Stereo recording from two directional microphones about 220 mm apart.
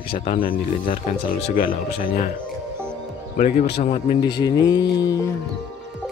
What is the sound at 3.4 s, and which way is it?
Speech, 35° left (ahead or behind).